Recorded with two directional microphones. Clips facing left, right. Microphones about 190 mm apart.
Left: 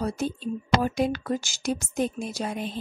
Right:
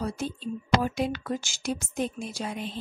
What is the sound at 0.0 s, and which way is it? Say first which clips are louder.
Speech: left 3 dB; 45° left (ahead or behind).